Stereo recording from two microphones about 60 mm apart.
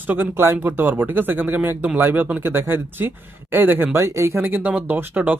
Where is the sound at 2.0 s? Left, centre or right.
Right.